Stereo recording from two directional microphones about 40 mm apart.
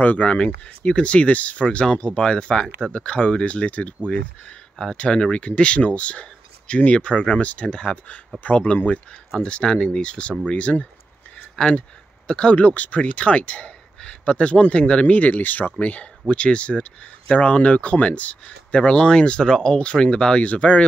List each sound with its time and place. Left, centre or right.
0.0 s speech: left
4.9 s speech: left
11.3 s a sound: left
12.3 s speech: left
12.5 s speech: left
15.1 s speech: left